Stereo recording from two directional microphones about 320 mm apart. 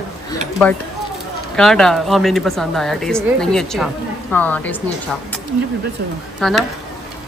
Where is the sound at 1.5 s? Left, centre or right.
Centre.